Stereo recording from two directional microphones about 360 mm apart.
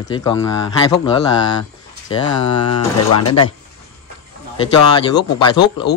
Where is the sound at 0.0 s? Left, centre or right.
Centre.